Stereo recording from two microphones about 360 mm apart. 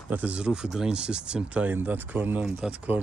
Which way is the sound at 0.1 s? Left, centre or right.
Centre.